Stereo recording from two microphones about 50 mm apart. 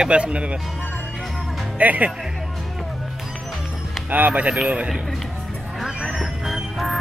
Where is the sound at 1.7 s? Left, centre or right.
Right.